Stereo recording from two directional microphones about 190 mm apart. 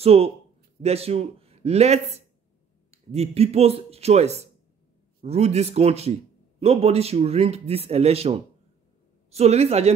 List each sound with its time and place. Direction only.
0.0 s speech: 30° right (ahead or behind)